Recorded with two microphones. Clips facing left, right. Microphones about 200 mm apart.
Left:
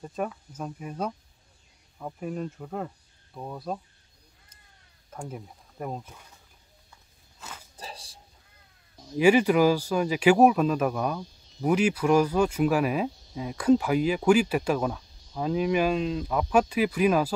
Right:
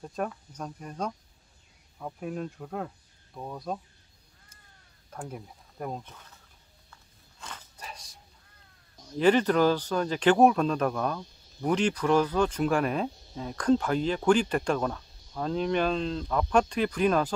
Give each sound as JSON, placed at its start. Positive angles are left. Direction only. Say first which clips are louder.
{"t": 0.0, "sound": "speech", "louder": "left 1 dB", "side_deg": 0}
{"t": 5.1, "sound": "speech", "louder": "left 1 dB", "side_deg": 5}
{"t": 6.9, "sound": "walk", "louder": "right 4 dB", "side_deg": 10}
{"t": 7.7, "sound": "dog", "louder": "left 3 dB", "side_deg": 30}
{"t": 9.0, "sound": "speech", "louder": "left 2 dB", "side_deg": 10}